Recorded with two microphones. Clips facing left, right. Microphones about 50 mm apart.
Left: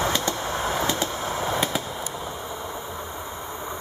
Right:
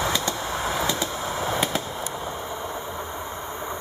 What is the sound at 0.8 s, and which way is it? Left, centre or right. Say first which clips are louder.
Vehicle: left 1 dB; left.